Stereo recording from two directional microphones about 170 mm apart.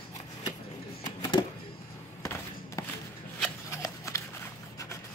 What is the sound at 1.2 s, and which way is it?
Music, 25° left (ahead or behind).